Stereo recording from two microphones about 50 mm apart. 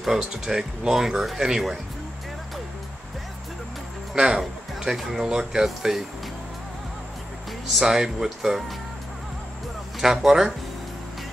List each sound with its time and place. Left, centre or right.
0.0 s speech: centre
4.1 s speech: centre
7.6 s speech: centre
9.9 s speech: centre